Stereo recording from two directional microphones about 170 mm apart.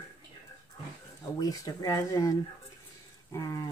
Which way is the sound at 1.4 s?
20° left (ahead or behind).